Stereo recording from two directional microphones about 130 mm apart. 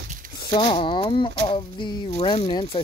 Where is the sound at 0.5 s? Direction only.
40° left (ahead or behind).